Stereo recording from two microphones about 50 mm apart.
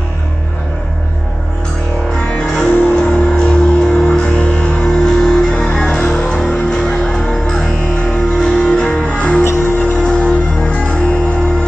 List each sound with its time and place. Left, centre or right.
2.3 s music: centre
9.4 s music: left
10.0 s music: centre